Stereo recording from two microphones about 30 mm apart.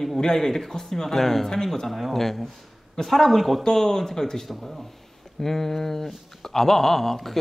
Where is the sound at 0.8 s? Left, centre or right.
Centre.